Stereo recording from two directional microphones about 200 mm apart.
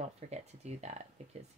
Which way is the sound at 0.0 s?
35° right (ahead or behind).